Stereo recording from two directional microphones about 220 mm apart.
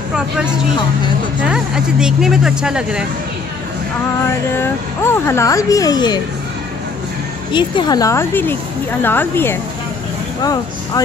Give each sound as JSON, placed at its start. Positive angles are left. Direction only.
{"t": 1.4, "sound": "speech", "side_deg": -5}
{"t": 4.5, "sound": "speech", "side_deg": 10}
{"t": 7.5, "sound": "speech", "side_deg": 20}